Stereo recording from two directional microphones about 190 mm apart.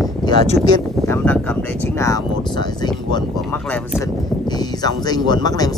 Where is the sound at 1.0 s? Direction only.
10° left (ahead or behind).